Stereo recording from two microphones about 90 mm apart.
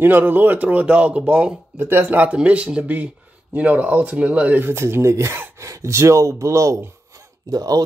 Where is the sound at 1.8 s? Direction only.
25° right (ahead or behind).